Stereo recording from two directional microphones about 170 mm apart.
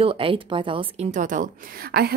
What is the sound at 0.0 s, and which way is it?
A woman's voice, 30° right (ahead or behind).